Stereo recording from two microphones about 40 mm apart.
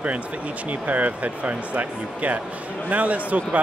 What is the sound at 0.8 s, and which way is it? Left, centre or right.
Speech, right.